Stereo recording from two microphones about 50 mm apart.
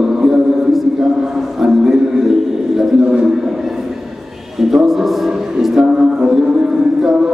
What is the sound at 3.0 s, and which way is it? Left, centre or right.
Speech, centre.